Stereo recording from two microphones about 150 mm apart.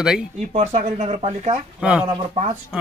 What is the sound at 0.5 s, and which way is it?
Speech, 50° right (ahead or behind).